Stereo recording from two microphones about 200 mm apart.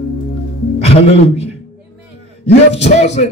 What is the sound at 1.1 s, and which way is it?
Speech, 30° left (ahead or behind).